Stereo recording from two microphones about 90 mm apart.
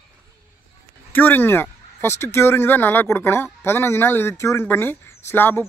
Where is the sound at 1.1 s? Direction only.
20° left (ahead or behind).